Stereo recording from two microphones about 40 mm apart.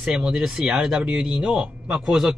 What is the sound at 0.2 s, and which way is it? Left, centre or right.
Speech, centre.